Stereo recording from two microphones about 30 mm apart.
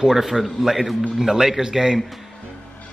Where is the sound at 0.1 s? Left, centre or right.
Centre.